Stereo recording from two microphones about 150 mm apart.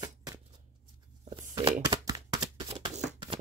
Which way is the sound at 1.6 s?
30° right (ahead or behind).